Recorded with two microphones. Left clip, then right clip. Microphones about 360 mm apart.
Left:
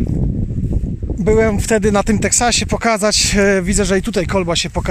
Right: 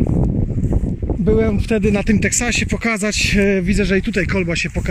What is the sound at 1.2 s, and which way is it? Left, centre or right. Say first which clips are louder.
Speech: left 4 dB; left.